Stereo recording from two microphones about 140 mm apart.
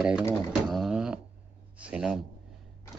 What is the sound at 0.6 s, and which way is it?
Beatboxing, centre (ahead or behind).